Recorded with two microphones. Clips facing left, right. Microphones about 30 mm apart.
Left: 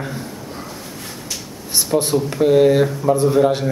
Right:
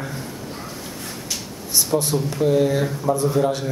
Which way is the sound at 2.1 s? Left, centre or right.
Left.